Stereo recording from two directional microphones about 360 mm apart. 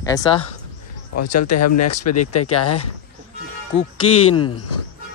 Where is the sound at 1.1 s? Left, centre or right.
Left.